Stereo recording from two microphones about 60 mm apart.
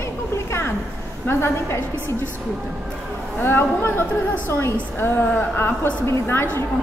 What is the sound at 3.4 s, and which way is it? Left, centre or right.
A woman's voice, left.